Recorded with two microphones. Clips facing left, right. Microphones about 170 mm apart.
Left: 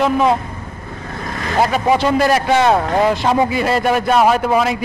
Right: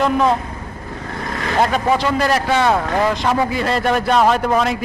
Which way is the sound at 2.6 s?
20° left (ahead or behind).